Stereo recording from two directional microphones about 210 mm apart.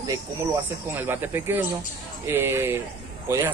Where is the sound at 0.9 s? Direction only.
10° right (ahead or behind).